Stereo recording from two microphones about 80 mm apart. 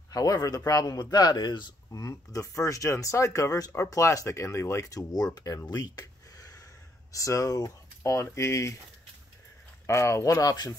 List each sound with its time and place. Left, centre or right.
0.1 s speech: left
1.9 s speech: left
5.7 s a sound: left
7.1 s speech: left
9.8 s speech: left